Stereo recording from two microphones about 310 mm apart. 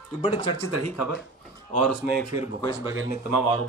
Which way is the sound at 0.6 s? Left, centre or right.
Left.